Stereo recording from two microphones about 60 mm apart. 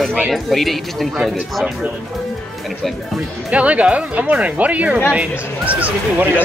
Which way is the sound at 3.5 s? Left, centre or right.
Right.